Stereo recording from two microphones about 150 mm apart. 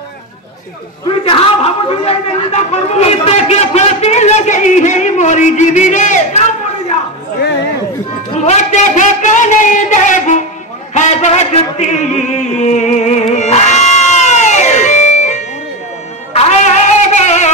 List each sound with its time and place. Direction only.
1.2 s a man's voice: 40° left (ahead or behind); by 6.4 s 55° left (ahead or behind)
8.5 s a man's voice: 55° left (ahead or behind)
11.0 s a sound: 50° left (ahead or behind)
16.3 s music: 50° left (ahead or behind)